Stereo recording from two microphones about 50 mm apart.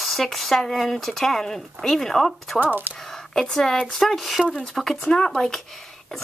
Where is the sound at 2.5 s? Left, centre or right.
Right.